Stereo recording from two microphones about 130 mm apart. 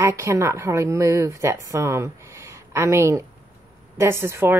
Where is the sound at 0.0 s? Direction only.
20° right (ahead or behind).